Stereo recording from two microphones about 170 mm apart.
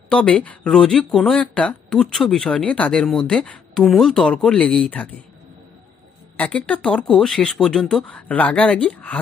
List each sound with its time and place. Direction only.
0.1 s speech: 5° left (ahead or behind)
6.3 s speech: 10° left (ahead or behind)